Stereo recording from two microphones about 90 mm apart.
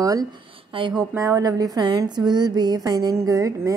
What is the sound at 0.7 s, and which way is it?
Speech, 70° right (ahead or behind).